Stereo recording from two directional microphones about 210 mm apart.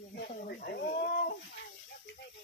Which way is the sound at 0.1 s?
50° left (ahead or behind).